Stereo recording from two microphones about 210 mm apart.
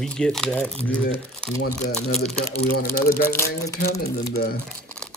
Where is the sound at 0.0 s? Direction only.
5° left (ahead or behind).